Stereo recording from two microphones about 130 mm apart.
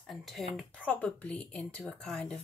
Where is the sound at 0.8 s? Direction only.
10° left (ahead or behind).